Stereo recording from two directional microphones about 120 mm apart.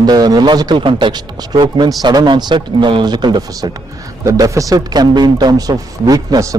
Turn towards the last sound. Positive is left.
turn(degrees=-30)  # may be behind; listen again after turning